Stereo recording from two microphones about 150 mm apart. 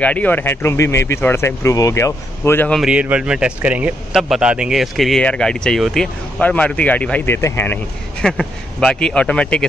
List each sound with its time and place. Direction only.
0.0 s speech: 10° left (ahead or behind)
2.8 s speech: 5° right (ahead or behind)